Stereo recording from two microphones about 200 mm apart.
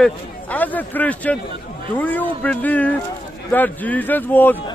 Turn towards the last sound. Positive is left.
turn(degrees=10)  # may be behind; listen again after turning